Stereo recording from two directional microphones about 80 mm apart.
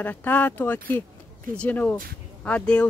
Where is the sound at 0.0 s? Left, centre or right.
Left.